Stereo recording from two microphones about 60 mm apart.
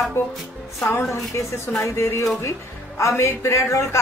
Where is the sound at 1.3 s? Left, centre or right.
Left.